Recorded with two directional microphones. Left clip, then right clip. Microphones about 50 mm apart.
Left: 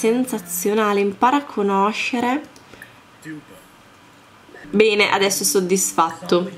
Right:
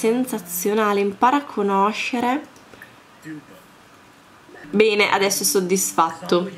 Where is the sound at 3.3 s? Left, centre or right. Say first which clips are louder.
Left 1 dB; left.